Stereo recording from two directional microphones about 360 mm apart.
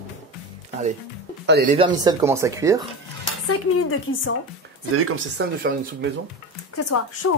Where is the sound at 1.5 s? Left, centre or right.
Right.